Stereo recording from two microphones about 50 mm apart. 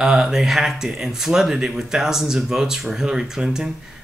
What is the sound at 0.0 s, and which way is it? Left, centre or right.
Speech, centre.